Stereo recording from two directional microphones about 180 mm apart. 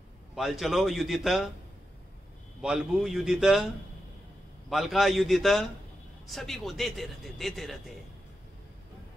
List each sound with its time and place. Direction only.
0.4 s a man's voice: centre (ahead or behind)
2.6 s a man's voice: 5° right (ahead or behind)